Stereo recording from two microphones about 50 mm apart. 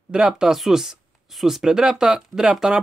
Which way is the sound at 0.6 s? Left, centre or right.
Centre.